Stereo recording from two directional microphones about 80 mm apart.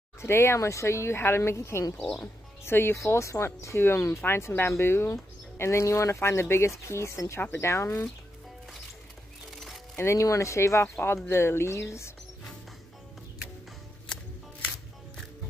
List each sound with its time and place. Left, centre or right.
0.2 s speech: left
9.9 s speech: left